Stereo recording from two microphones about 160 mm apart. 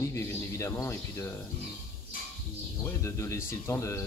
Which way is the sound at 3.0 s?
15° left (ahead or behind).